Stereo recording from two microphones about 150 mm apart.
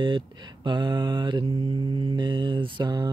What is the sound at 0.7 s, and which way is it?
Mantra, 30° right (ahead or behind).